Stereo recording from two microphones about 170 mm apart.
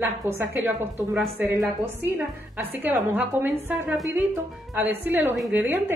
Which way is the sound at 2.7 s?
10° right (ahead or behind).